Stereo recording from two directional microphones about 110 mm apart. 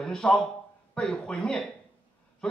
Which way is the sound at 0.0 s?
5° left (ahead or behind).